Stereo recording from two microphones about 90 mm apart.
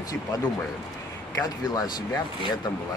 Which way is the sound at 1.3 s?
45° left (ahead or behind).